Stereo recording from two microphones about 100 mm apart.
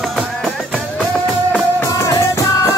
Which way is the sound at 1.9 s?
35° left (ahead or behind).